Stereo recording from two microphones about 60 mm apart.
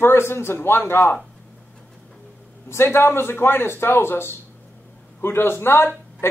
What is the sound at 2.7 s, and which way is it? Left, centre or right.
A man's voice, left.